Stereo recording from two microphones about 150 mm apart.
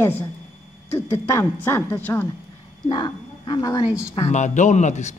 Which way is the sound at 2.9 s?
30° left (ahead or behind).